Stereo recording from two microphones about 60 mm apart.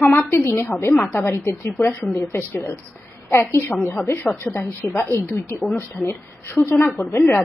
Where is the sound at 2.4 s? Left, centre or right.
Left.